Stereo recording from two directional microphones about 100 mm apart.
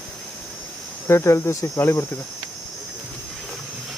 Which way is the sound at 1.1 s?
25° left (ahead or behind).